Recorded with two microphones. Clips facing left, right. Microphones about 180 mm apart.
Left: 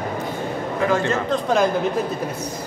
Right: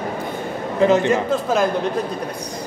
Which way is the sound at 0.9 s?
20° right (ahead or behind).